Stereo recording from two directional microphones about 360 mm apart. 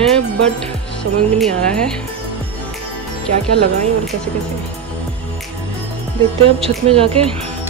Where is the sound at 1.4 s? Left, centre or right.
Centre.